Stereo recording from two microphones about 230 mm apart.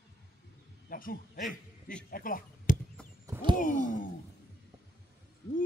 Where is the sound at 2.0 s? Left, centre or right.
Left.